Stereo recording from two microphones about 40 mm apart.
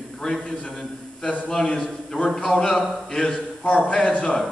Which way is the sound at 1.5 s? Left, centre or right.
Centre.